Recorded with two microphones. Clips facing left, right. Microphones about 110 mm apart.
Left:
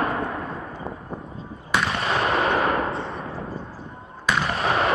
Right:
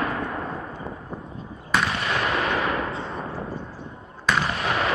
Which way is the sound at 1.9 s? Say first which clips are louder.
Left 2 dB; 30° left (ahead or behind).